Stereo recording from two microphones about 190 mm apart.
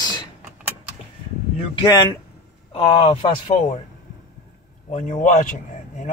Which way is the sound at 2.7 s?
30° left (ahead or behind).